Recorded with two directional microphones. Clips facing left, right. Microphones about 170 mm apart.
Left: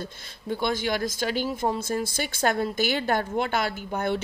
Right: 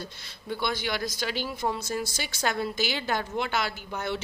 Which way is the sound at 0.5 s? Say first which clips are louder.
Left 4 dB; 45° left (ahead or behind).